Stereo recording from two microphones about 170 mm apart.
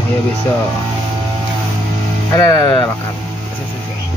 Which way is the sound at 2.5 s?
20° left (ahead or behind).